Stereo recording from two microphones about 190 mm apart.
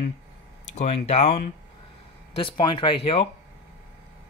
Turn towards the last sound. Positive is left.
turn(degrees=30)  # may be behind; listen again after turning